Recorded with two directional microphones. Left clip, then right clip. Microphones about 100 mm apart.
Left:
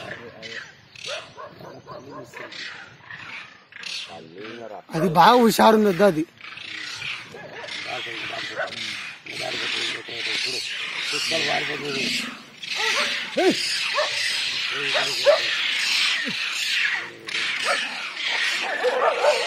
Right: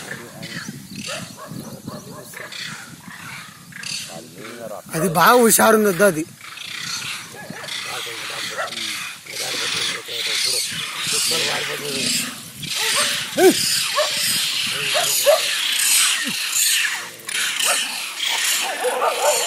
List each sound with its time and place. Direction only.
4.9 s speech: centre (ahead or behind)
7.6 s wild animals: 35° right (ahead or behind)
11.5 s a sound: 35° right (ahead or behind)